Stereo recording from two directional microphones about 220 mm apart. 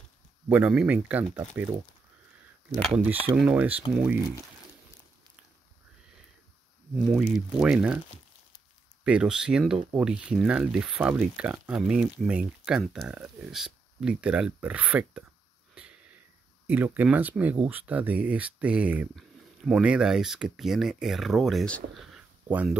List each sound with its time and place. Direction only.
0.5 s speech: 5° right (ahead or behind)
2.8 s speech: 5° right (ahead or behind)
7.1 s speech: centre (ahead or behind)
9.0 s speech: 5° right (ahead or behind)
16.6 s speech: 10° right (ahead or behind)